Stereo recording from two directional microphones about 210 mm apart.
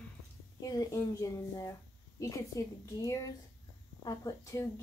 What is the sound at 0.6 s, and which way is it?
A woman's voice, 15° left (ahead or behind).